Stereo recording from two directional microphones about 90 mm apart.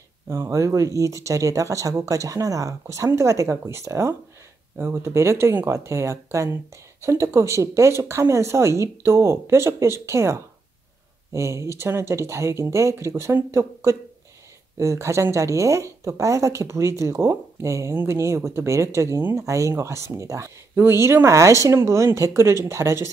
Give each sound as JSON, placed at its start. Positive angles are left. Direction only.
{"t": 0.3, "sound": "speech", "side_deg": -35}